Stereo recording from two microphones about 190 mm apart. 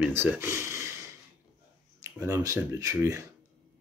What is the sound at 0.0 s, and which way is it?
Speech, 10° right (ahead or behind).